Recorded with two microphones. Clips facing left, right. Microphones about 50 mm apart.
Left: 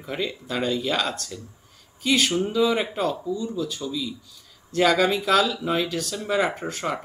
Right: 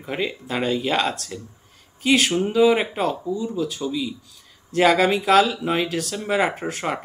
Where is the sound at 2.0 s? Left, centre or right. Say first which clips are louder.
Right 3 dB; centre.